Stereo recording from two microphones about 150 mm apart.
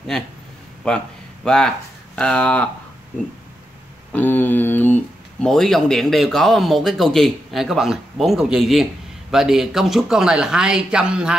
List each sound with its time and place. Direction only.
0.1 s speech: 5° left (ahead or behind)
4.1 s speech: 10° left (ahead or behind); by 11.3 s 5° right (ahead or behind)